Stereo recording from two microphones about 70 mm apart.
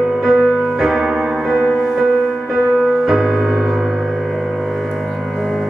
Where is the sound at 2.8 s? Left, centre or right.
Centre.